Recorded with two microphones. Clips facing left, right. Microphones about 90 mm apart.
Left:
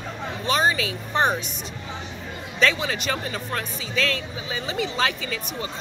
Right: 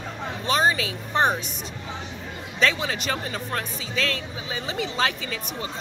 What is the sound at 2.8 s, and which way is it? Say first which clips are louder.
Speech: left 1 dB; 35° right (ahead or behind).